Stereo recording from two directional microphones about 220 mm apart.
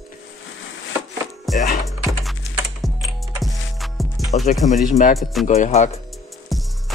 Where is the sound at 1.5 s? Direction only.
Centre (ahead or behind).